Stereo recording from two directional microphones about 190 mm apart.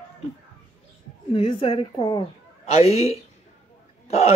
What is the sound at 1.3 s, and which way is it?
Speech, 25° left (ahead or behind).